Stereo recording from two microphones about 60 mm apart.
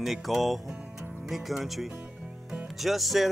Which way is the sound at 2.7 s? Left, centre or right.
Centre.